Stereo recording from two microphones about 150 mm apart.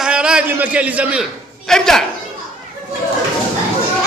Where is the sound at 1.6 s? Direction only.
5° left (ahead or behind).